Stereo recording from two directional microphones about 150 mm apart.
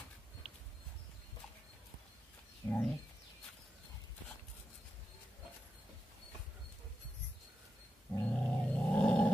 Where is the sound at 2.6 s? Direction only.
30° left (ahead or behind).